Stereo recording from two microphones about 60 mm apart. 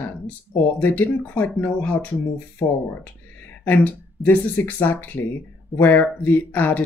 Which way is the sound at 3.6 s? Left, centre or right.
Left.